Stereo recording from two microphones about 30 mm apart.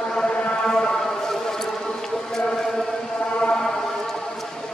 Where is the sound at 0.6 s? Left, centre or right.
Left.